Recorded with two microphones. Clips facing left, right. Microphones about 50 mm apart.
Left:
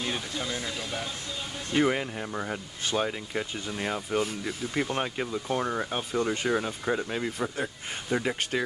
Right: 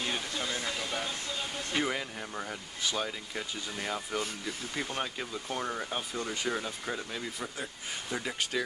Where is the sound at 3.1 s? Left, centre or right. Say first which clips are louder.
Left 6 dB; left.